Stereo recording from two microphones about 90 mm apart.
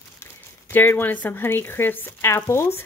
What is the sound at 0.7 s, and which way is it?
Speech, 20° left (ahead or behind).